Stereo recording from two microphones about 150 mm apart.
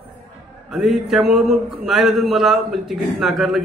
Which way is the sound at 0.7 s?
Centre (ahead or behind).